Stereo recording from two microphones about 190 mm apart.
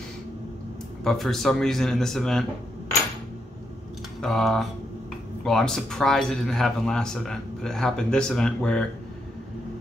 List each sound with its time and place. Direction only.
1.0 s speech: centre (ahead or behind)
4.2 s speech: centre (ahead or behind)